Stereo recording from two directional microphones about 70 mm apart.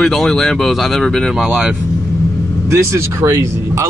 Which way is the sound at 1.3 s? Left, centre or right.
Centre.